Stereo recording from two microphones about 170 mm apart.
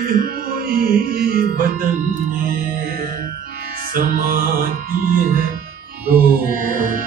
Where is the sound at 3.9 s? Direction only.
60° right (ahead or behind).